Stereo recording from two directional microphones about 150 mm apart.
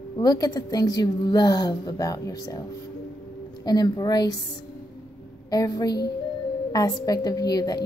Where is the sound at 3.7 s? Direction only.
25° left (ahead or behind).